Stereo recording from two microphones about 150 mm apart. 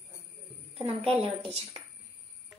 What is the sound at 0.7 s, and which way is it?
Speech, 40° right (ahead or behind).